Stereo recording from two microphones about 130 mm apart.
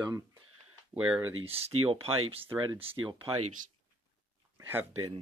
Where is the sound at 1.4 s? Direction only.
45° right (ahead or behind).